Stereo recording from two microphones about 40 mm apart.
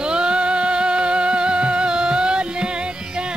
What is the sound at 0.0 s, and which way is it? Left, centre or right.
Music, right.